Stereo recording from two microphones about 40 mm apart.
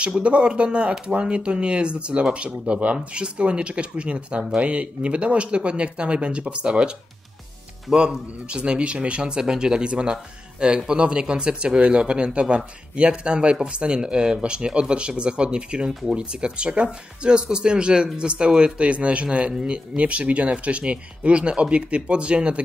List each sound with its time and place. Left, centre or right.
0.0 s speech: right
7.9 s speech: right
20.0 s speech: right